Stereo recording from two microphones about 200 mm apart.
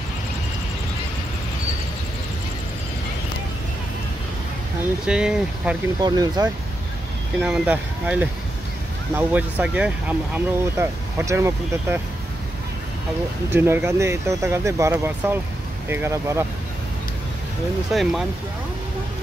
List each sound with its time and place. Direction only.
5.0 s speech: 5° right (ahead or behind)
5.9 s speech: 20° right (ahead or behind)
7.4 s speech: 5° right (ahead or behind)
13.5 s speech: 10° right (ahead or behind)
17.9 s speech: centre (ahead or behind)